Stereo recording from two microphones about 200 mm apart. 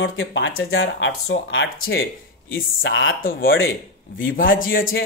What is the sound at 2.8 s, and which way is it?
Speech, 65° left (ahead or behind).